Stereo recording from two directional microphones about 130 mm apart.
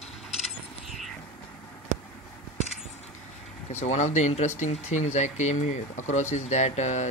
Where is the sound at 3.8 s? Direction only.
65° left (ahead or behind).